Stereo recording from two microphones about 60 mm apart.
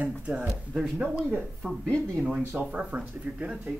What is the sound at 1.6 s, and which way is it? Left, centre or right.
Speech, centre.